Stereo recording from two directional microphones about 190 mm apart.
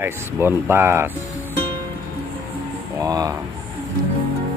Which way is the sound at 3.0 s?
20° right (ahead or behind).